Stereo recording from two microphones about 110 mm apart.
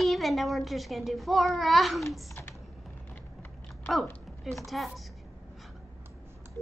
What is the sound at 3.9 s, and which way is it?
Speech, centre (ahead or behind).